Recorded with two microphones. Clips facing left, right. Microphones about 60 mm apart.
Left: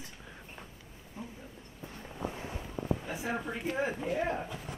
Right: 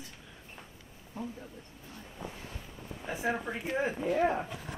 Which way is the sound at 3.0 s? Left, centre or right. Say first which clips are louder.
Right 2 dB; centre.